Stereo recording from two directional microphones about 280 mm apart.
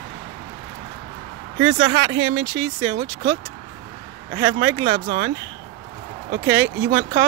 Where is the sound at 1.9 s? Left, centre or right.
Right.